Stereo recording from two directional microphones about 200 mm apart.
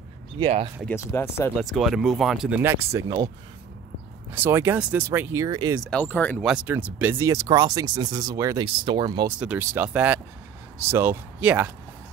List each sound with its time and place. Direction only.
0.4 s speech: 30° right (ahead or behind)
0.8 s speech: 15° left (ahead or behind)
1.6 s speech: centre (ahead or behind)
4.3 s speech: 10° right (ahead or behind)
5.9 s speech: 5° left (ahead or behind)
6.5 s speech: 5° right (ahead or behind)
9.4 s speech: 10° right (ahead or behind)